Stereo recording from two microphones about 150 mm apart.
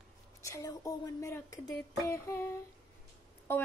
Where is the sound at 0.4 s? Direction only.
20° left (ahead or behind).